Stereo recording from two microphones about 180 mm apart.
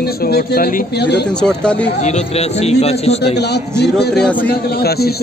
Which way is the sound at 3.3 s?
65° left (ahead or behind).